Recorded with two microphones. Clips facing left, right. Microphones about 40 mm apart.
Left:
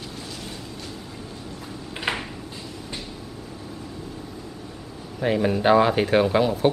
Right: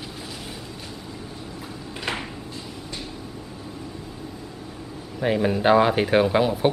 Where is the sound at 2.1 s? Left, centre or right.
Centre.